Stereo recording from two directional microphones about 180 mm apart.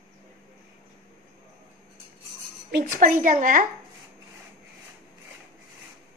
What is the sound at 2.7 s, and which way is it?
Speech, 45° right (ahead or behind).